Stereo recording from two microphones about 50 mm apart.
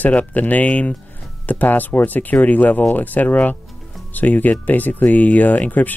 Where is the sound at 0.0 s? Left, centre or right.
Left.